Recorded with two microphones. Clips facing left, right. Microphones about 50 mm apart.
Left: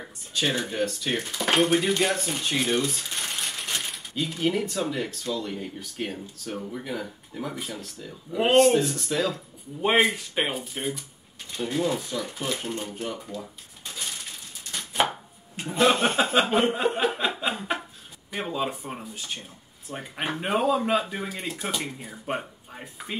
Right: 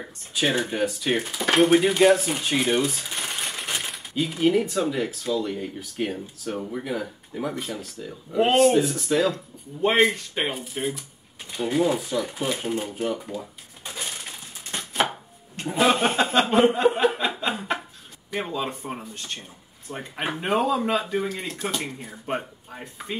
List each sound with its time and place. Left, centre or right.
0.3 s speech: centre
14.7 s chopping: right
15.7 s chuckle: centre
17.6 s a sound: centre
18.5 s speech: centre